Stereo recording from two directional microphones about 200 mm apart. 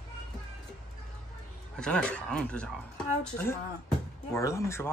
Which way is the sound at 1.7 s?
5° left (ahead or behind).